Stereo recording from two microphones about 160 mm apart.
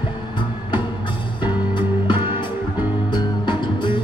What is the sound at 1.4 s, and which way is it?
Music, 30° left (ahead or behind).